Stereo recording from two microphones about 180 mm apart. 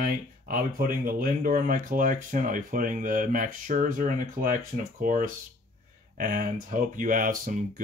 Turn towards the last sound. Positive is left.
turn(degrees=-50)  # may be behind; listen again after turning